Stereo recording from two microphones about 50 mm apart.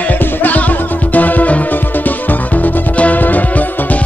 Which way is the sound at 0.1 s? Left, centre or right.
Left.